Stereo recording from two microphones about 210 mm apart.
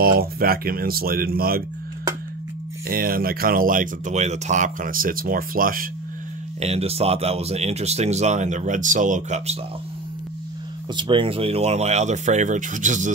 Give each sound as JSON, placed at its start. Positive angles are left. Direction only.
{"t": 0.0, "sound": "speech", "side_deg": -45}
{"t": 2.9, "sound": "speech", "side_deg": -45}
{"t": 6.6, "sound": "speech", "side_deg": -30}
{"t": 11.0, "sound": "speech", "side_deg": -25}